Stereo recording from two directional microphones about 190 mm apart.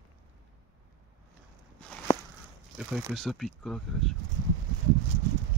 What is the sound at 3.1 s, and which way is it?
Speech, centre (ahead or behind).